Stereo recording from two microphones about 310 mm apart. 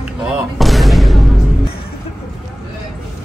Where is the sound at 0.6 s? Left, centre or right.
Centre.